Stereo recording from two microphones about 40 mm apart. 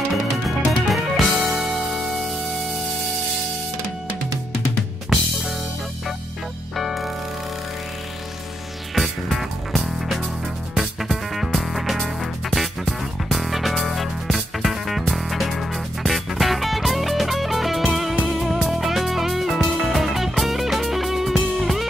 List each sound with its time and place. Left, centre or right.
0.7 s music: centre
6.8 s music: centre
8.9 s music: centre